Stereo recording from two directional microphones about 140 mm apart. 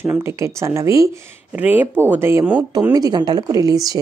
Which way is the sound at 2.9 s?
30° right (ahead or behind).